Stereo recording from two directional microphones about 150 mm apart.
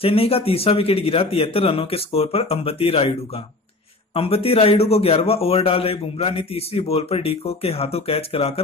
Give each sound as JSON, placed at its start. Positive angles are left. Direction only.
{"t": 0.0, "sound": "a man's voice", "side_deg": 40}